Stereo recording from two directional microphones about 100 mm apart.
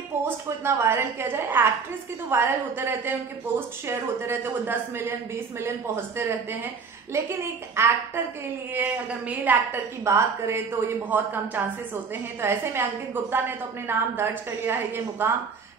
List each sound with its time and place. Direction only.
0.2 s a woman's voice: 25° right (ahead or behind)
10.0 s a woman's voice: 25° right (ahead or behind)